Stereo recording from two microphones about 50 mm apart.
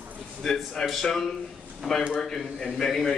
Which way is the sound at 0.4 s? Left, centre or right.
Centre.